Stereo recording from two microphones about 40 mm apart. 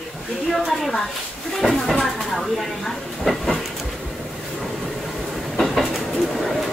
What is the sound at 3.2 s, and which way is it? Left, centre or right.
Train, centre.